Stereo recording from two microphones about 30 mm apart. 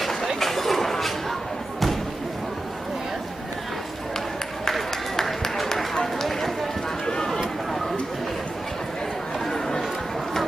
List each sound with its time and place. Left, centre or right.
0.4 s a sound: centre
6.1 s run: centre
9.5 s chatter: centre